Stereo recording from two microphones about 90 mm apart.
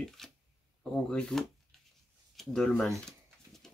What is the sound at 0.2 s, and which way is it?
Speech, 5° left (ahead or behind).